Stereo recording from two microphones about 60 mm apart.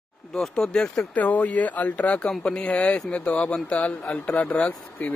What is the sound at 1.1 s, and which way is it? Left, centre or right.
Speech, left.